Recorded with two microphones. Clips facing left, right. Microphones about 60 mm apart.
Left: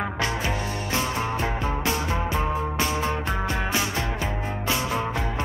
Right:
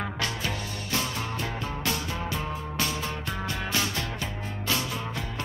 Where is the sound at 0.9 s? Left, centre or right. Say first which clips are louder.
Left 4 dB; left.